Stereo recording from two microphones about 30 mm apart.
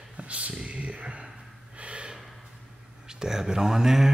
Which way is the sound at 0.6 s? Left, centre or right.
Right.